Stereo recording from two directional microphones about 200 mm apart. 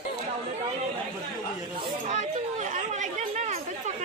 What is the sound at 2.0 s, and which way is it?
Chatter, 35° right (ahead or behind).